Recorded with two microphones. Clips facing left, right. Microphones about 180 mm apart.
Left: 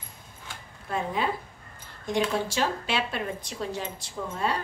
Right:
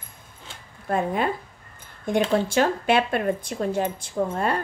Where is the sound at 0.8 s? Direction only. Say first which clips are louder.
Right 5 dB; 55° right (ahead or behind).